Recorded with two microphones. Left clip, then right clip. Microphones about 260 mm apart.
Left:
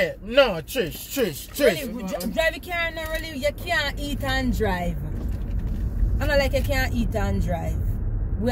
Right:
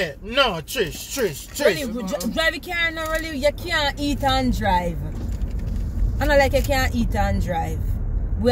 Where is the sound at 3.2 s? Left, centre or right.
Centre.